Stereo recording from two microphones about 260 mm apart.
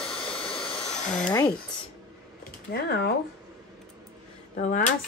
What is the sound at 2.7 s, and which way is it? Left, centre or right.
Speech, left.